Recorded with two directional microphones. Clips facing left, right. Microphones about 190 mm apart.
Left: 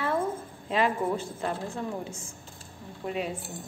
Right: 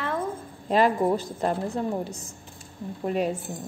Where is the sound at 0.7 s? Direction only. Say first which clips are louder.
Right 5 dB; 40° right (ahead or behind).